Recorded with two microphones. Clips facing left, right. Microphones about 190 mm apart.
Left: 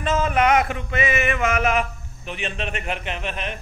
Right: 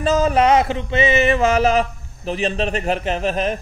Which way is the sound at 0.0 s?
35° right (ahead or behind).